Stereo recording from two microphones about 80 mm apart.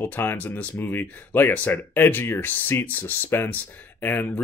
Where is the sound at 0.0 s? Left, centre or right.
Left.